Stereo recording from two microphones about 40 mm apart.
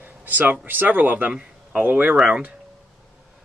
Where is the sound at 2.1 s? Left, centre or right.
Right.